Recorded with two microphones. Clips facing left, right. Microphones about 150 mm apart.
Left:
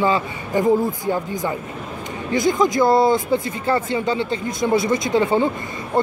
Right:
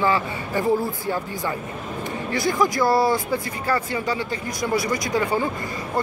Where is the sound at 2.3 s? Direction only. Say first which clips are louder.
Left 4 dB; 20° left (ahead or behind).